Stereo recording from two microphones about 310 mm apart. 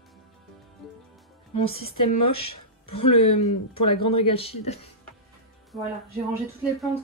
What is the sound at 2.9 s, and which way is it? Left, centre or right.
Speech, left.